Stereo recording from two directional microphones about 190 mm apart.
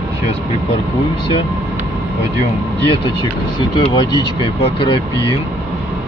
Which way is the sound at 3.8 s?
25° left (ahead or behind).